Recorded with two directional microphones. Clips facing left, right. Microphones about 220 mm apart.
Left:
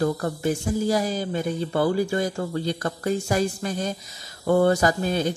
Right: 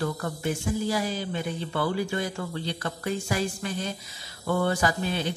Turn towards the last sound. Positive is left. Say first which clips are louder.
# left 5 dB
turn(degrees=45)  # may be behind; listen again after turning